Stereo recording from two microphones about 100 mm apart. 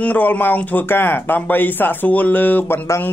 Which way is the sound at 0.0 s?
15° left (ahead or behind).